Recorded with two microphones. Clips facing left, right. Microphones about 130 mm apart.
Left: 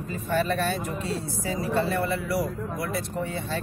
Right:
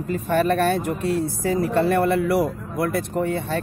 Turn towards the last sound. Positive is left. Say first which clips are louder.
# right 7 dB
turn(degrees=-55)  # may be behind; listen again after turning